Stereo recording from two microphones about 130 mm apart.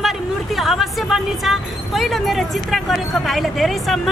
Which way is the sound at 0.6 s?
Centre (ahead or behind).